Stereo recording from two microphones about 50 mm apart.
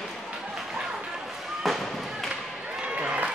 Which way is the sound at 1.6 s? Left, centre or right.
Centre.